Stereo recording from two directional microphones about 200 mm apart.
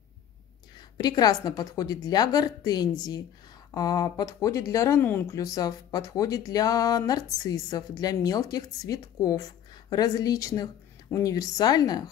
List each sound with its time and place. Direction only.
0.7 s a woman's voice: 20° left (ahead or behind)